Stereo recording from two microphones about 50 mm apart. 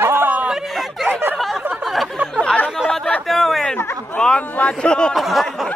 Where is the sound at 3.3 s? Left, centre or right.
Centre.